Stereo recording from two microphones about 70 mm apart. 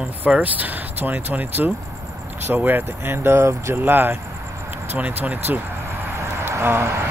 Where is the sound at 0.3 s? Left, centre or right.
Right.